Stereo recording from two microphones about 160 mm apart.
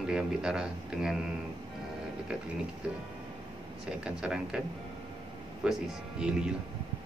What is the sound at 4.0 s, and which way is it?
Speech, 5° right (ahead or behind).